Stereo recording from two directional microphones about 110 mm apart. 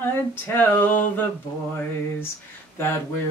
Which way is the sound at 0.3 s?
20° left (ahead or behind).